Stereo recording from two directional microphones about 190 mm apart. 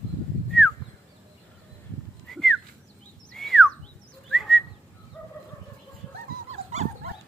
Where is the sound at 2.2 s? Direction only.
Centre (ahead or behind).